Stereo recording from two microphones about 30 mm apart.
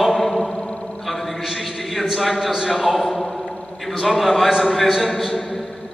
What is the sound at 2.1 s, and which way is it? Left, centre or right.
A man's voice, centre.